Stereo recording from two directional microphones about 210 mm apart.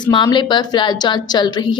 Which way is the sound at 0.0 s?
20° left (ahead or behind).